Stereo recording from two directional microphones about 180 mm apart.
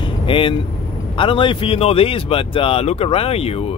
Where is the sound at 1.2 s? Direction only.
30° left (ahead or behind).